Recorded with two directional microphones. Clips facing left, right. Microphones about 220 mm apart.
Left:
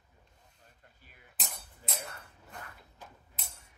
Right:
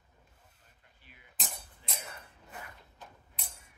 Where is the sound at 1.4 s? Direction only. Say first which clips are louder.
Right 1 dB; centre (ahead or behind).